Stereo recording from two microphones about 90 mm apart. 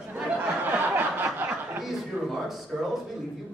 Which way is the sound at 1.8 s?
Centre (ahead or behind).